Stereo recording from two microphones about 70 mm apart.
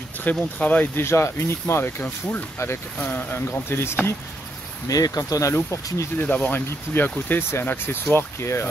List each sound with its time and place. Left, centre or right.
0.2 s speech: left
0.9 s speech: left
4.8 s speech: left
5.5 s speech: left
6.2 s speech: left